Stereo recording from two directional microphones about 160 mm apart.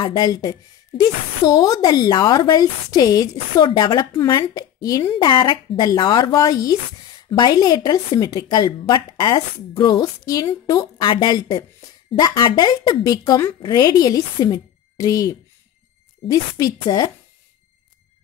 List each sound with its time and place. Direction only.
0.0 s a woman's voice: 25° left (ahead or behind)